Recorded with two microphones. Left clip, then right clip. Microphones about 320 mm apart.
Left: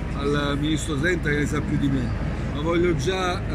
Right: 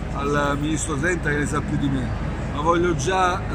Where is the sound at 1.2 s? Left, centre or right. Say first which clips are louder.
Right 1 dB; right.